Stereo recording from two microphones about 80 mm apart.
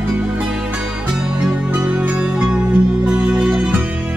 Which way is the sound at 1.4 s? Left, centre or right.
Centre.